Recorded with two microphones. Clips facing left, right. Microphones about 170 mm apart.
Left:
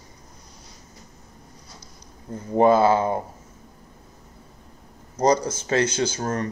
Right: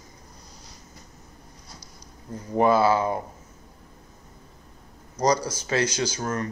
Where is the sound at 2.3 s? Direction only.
25° left (ahead or behind).